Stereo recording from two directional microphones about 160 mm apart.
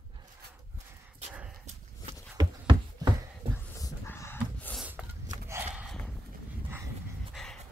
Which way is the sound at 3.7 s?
15° left (ahead or behind).